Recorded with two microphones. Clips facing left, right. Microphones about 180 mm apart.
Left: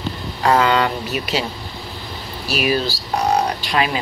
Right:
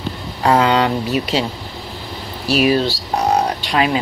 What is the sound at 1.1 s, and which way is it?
Speech, 35° right (ahead or behind).